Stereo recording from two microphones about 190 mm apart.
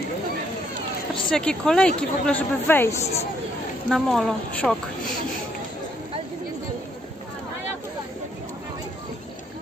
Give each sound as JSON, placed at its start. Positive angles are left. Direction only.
{"t": 1.3, "sound": "speech", "side_deg": 5}
{"t": 3.0, "sound": "speech", "side_deg": 35}
{"t": 3.9, "sound": "speech", "side_deg": 0}